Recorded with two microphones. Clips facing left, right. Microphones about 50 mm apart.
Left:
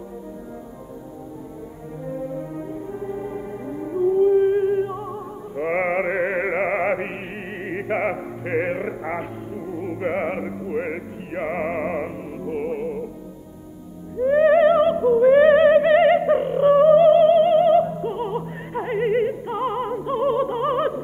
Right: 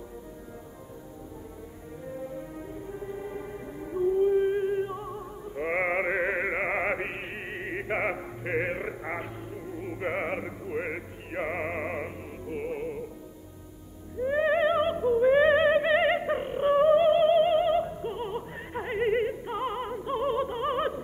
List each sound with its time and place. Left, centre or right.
2.0 s music: left
14.1 s music: left
18.7 s opera: left